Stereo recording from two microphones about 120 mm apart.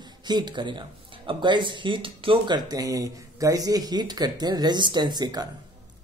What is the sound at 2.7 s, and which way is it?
A man's voice, 30° right (ahead or behind).